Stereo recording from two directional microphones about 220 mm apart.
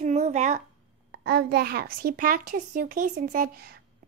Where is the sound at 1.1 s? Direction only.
45° right (ahead or behind).